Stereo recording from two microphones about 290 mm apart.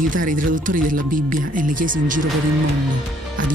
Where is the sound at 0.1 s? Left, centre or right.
Right.